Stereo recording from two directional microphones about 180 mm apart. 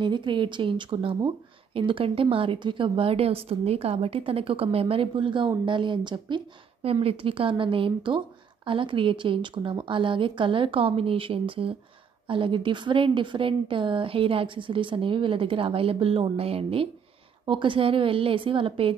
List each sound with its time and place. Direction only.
0.0 s speech: 25° right (ahead or behind)